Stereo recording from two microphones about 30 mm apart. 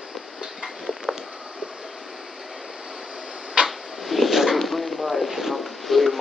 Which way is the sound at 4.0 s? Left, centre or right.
Centre.